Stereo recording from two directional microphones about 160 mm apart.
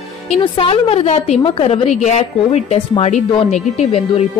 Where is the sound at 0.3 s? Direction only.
35° left (ahead or behind).